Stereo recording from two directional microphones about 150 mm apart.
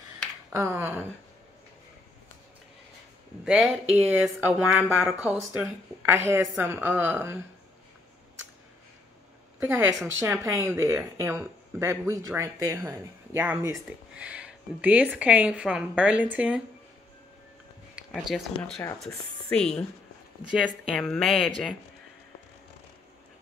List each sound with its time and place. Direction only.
0.5 s speech: 20° right (ahead or behind)
3.4 s speech: centre (ahead or behind)
3.9 s speech: 10° right (ahead or behind)
9.6 s speech: 15° right (ahead or behind)
18.1 s speech: 5° left (ahead or behind)
20.8 s speech: 5° left (ahead or behind)